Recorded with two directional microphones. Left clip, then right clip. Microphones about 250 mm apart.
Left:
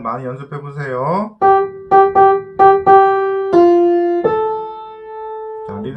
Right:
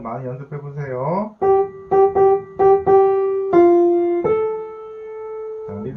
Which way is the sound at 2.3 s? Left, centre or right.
Left.